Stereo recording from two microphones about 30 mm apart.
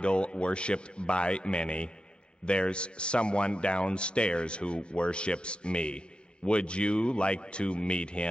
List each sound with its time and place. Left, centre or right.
0.0 s a man's voice: left